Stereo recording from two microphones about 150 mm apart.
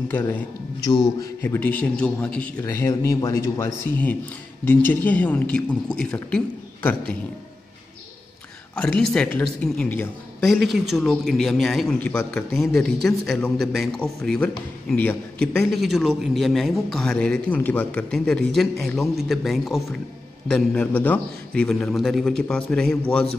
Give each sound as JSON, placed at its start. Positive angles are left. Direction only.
{"t": 0.1, "sound": "a man's voice", "side_deg": 15}
{"t": 2.6, "sound": "a man's voice", "side_deg": 20}
{"t": 8.7, "sound": "a man's voice", "side_deg": 5}